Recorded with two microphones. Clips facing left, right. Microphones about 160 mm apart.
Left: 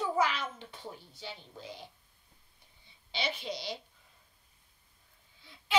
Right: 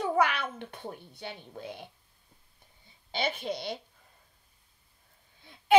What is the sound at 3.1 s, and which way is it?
Speech, 50° right (ahead or behind).